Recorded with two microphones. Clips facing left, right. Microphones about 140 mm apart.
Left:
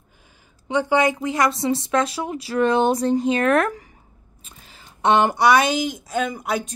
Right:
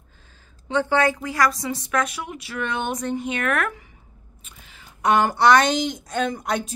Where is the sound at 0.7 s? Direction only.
15° left (ahead or behind); by 3.7 s 35° left (ahead or behind).